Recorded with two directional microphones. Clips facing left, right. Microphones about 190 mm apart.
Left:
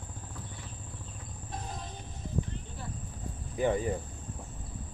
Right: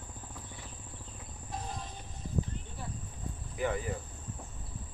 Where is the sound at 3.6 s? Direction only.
30° left (ahead or behind).